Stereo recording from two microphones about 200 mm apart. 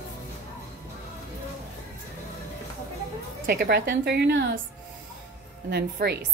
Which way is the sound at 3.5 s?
50° right (ahead or behind).